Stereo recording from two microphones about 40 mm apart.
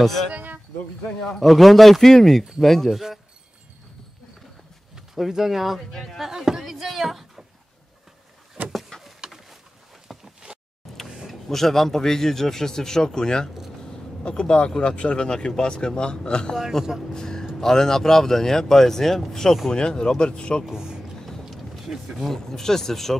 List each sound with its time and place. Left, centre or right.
1.4 s speech: centre
4.9 s speech: centre
5.9 s speech: centre
6.1 s speech: centre
9.2 s bird: centre
10.0 s a sound: centre
11.4 s a man's voice: centre; by 16.5 s left
16.8 s speech: centre
17.1 s music: centre
17.6 s speech: centre
19.7 s a man's voice: centre
20.7 s speech: centre
21.5 s speech: centre